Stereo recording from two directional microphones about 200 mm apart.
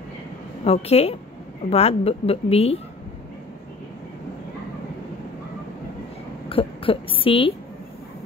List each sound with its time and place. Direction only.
0.7 s speech: 30° left (ahead or behind)
6.5 s a woman's voice: 25° left (ahead or behind)